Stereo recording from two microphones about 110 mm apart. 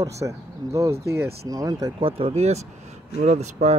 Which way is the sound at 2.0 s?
60° right (ahead or behind).